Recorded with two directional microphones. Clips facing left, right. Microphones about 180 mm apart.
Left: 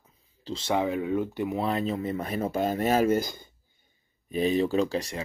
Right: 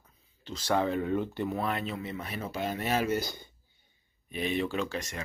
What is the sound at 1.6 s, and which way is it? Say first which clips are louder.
Speech: left 5 dB; 35° left (ahead or behind).